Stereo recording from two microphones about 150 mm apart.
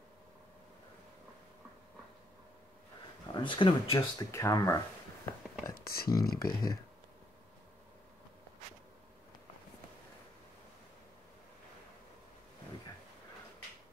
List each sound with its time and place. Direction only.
3.3 s speech: 35° left (ahead or behind)
4.3 s whispering: 20° left (ahead or behind)
5.8 s speech: 85° left